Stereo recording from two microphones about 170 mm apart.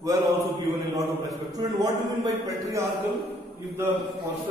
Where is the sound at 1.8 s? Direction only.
20° right (ahead or behind).